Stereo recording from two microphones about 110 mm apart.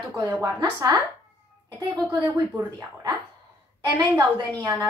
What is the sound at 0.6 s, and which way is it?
A woman's voice, 40° right (ahead or behind).